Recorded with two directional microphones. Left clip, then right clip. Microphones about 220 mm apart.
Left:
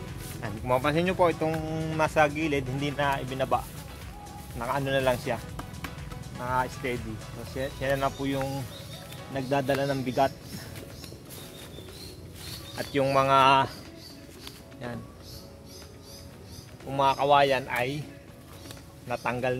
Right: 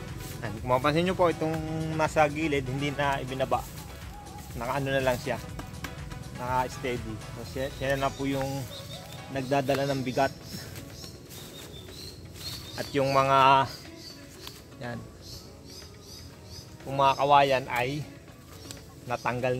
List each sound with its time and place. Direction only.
0.3 s speech: centre (ahead or behind)
12.7 s speech: 5° right (ahead or behind)
14.4 s music: 15° right (ahead or behind)
16.9 s speech: 20° right (ahead or behind)
19.0 s speech: 20° right (ahead or behind)